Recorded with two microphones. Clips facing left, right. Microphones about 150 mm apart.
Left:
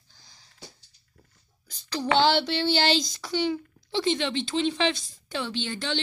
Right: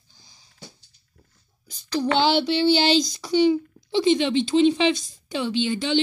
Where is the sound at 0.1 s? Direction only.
15° right (ahead or behind).